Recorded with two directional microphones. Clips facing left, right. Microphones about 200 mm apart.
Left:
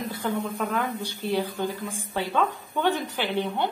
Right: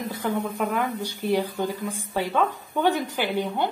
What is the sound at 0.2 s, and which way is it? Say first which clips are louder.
A woman's voice: right 2 dB; 10° right (ahead or behind).